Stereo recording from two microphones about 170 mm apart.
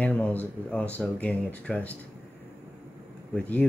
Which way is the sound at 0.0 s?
10° left (ahead or behind).